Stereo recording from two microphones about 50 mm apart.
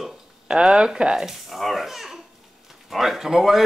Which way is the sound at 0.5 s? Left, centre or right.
Centre.